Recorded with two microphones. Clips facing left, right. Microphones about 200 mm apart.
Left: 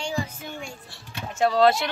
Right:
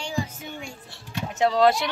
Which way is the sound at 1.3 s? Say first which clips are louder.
Even; 20° right (ahead or behind).